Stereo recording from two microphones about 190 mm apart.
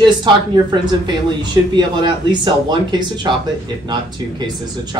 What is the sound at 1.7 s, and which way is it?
Speech, 25° right (ahead or behind).